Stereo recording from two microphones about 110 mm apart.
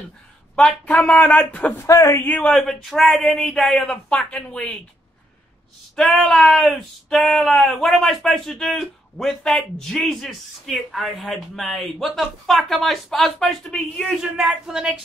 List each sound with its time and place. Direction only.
0.6 s speech: 10° left (ahead or behind)
1.9 s speech: 30° left (ahead or behind)
2.2 s speech: 10° left (ahead or behind)
5.9 s speech: 5° left (ahead or behind)